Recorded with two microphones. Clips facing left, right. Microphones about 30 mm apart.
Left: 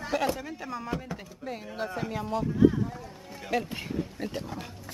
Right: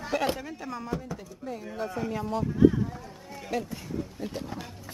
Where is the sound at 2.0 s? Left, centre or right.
Centre.